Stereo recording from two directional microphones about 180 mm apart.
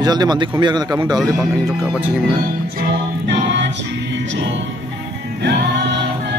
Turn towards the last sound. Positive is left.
turn(degrees=-75)  # may be behind; listen again after turning